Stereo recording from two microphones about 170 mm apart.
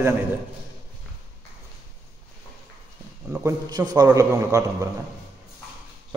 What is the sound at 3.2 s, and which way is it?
Speech, 10° right (ahead or behind).